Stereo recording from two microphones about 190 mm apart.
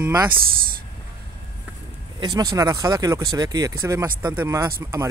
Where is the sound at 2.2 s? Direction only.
20° right (ahead or behind).